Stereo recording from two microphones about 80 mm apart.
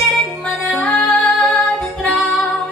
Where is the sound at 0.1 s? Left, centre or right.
Centre.